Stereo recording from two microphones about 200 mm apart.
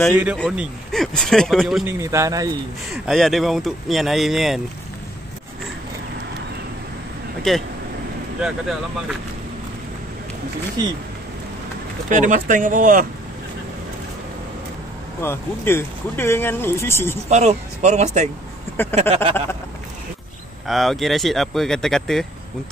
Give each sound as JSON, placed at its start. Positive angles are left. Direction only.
{"t": 0.1, "sound": "speech", "side_deg": -10}
{"t": 2.0, "sound": "speech", "side_deg": -15}
{"t": 2.9, "sound": "speech", "side_deg": 0}
{"t": 7.5, "sound": "speech", "side_deg": 0}
{"t": 12.1, "sound": "speech", "side_deg": -40}
{"t": 15.2, "sound": "speech", "side_deg": 10}
{"t": 17.3, "sound": "speech", "side_deg": -35}
{"t": 18.9, "sound": "a sound", "side_deg": -30}
{"t": 20.6, "sound": "speech", "side_deg": 0}